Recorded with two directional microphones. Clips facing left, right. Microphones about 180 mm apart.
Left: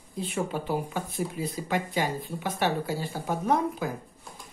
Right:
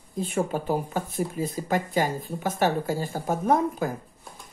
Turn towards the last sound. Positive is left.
turn(degrees=-45)  # may be behind; listen again after turning